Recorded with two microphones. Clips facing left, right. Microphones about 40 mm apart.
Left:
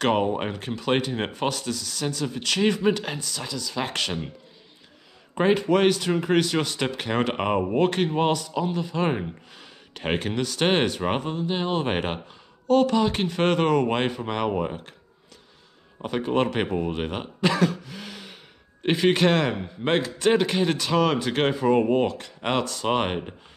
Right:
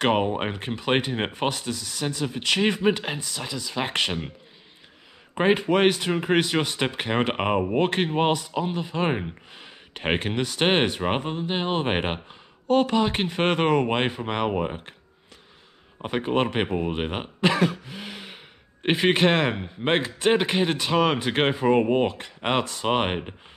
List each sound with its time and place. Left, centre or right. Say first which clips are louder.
0.0 s speech: even; centre
5.3 s speech: even; right
16.0 s speech: even; right